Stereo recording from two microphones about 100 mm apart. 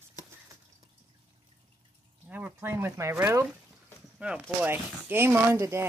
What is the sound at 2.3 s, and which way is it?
Speech, 20° right (ahead or behind).